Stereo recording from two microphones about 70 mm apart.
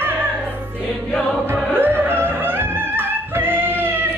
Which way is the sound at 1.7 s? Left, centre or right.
Right.